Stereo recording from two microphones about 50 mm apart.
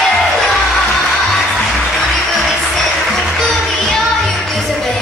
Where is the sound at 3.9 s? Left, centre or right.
Centre.